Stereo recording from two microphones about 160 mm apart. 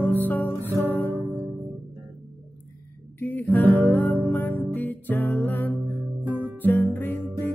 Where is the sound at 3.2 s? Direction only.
10° left (ahead or behind).